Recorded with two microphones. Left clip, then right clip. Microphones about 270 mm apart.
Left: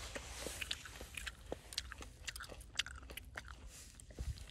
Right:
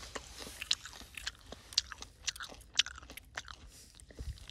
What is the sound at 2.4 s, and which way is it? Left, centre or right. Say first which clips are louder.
Chewing: right 9 dB; centre.